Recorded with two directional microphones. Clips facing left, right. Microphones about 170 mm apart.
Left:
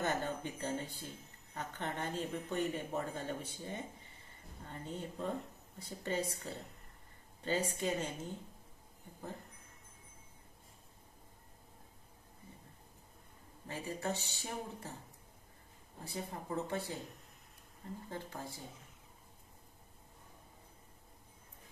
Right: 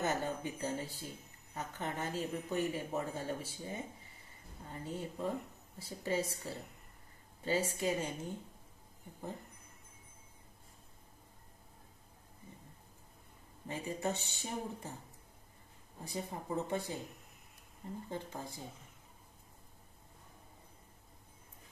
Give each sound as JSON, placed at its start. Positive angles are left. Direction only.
{"t": 0.0, "sound": "speech", "side_deg": -10}
{"t": 13.7, "sound": "speech", "side_deg": -15}
{"t": 16.0, "sound": "speech", "side_deg": -15}
{"t": 18.1, "sound": "speech", "side_deg": -20}